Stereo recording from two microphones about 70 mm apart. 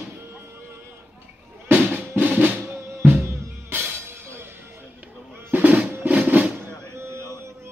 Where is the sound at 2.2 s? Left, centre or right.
Right.